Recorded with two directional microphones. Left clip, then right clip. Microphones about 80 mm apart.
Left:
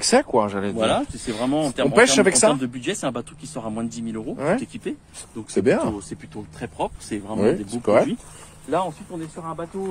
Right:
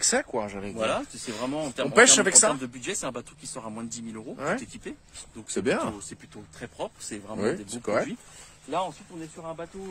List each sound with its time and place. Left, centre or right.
0.0 s speech: centre
0.7 s a man's voice: right
2.0 s speech: centre
2.4 s a man's voice: right
5.5 s speech: right
6.0 s speech: right
7.4 s a man's voice: centre
8.6 s speech: centre